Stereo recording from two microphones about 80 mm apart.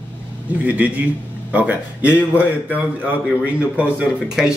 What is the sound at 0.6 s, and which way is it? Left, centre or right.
Speech, centre.